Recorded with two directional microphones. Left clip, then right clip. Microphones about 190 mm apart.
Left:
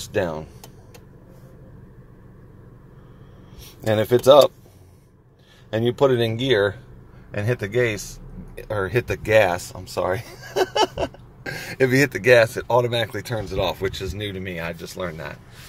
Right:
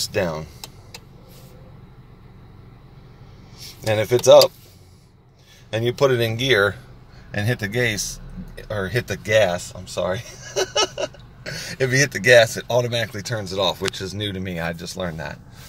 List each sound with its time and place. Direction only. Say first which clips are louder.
0.1 s a man's voice: right 1 dB; 5° left (ahead or behind)
3.8 s speech: even; 10° left (ahead or behind)
5.8 s a man's voice: even; 5° left (ahead or behind)